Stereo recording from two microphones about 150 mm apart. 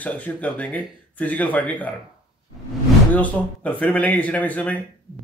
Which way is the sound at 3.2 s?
10° left (ahead or behind).